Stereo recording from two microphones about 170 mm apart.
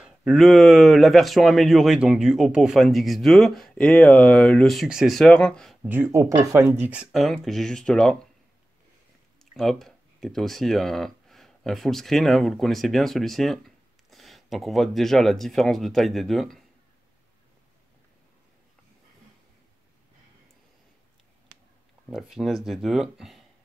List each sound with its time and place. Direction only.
0.0 s speech: 5° right (ahead or behind)
5.8 s speech: 10° right (ahead or behind); by 8.3 s 5° left (ahead or behind)
9.4 s speech: centre (ahead or behind)
22.1 s speech: centre (ahead or behind)